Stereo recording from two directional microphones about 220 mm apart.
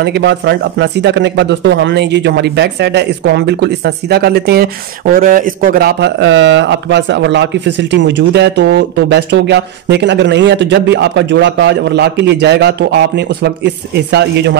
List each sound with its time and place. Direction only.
0.0 s speech: 50° right (ahead or behind)